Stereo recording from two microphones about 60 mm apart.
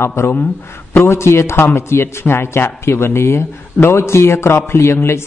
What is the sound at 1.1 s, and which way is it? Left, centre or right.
Speech, left.